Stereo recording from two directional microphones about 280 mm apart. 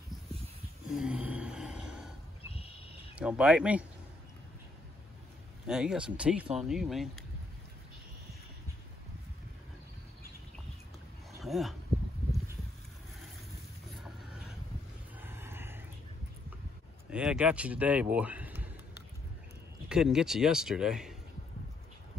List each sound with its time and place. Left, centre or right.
0.9 s a sound: centre
3.2 s a man's voice: centre
5.7 s a man's voice: centre
11.4 s speech: centre
14.0 s chicken: centre
15.1 s a sound: centre
17.1 s speech: centre
19.9 s a man's voice: centre